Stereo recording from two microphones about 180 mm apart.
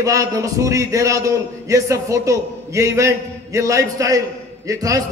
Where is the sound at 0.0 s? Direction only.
20° right (ahead or behind).